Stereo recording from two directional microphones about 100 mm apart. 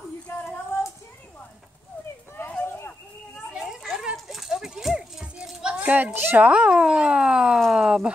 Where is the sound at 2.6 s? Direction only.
20° left (ahead or behind).